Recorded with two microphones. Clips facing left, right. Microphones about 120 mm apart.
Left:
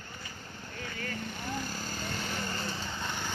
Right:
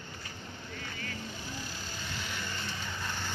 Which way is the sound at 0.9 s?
50° left (ahead or behind).